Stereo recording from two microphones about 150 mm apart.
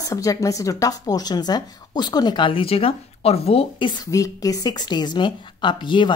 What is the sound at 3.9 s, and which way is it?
A woman's voice, 25° left (ahead or behind).